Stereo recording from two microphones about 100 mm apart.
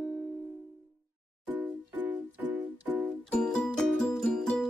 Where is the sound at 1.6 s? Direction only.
15° right (ahead or behind).